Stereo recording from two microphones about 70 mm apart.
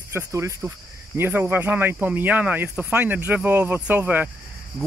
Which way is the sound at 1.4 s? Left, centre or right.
Right.